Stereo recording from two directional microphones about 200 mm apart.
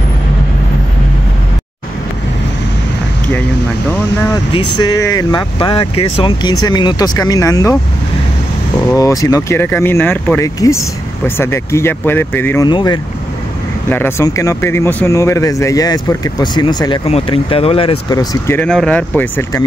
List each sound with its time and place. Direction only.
4.5 s speech: 20° left (ahead or behind)
8.9 s speech: 15° left (ahead or behind)
12.6 s speech: 20° left (ahead or behind)
13.8 s speech: 10° left (ahead or behind)
18.6 s speech: 5° left (ahead or behind)